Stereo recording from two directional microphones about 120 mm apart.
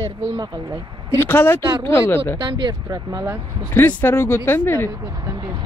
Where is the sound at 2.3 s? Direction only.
40° right (ahead or behind).